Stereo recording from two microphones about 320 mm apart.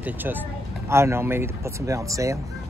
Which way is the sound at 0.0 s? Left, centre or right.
Centre.